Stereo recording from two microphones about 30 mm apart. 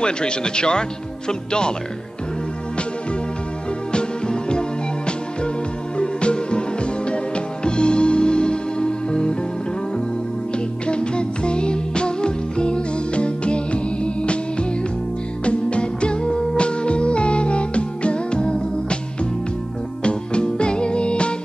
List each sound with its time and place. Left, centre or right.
0.0 s speech: left
3.9 s music: left
10.9 s music: left
20.0 s music: left